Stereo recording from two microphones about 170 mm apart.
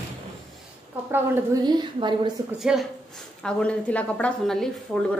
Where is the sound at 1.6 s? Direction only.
25° right (ahead or behind).